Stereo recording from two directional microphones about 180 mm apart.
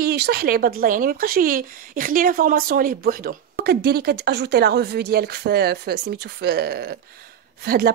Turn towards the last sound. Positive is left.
turn(degrees=-60)  # may be behind; listen again after turning